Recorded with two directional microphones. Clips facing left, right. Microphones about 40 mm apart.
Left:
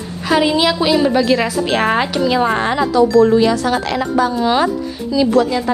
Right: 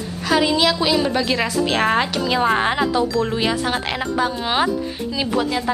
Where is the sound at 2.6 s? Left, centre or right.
Centre.